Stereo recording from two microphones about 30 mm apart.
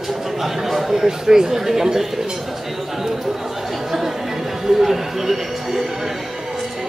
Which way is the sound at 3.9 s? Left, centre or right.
Centre.